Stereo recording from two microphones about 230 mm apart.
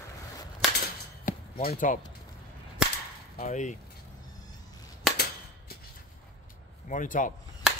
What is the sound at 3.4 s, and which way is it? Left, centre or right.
Speech, left.